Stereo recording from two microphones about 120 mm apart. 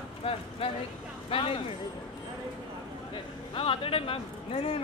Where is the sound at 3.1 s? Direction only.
50° left (ahead or behind).